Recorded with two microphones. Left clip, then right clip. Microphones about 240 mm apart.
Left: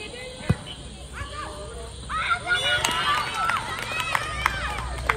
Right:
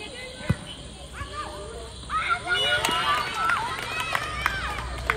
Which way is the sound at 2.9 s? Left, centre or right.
Left.